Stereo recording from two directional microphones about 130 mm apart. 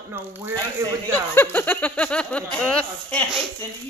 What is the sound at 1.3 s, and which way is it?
Speech, 15° left (ahead or behind).